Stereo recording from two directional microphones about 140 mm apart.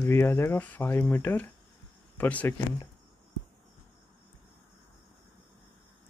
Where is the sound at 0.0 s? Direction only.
15° left (ahead or behind).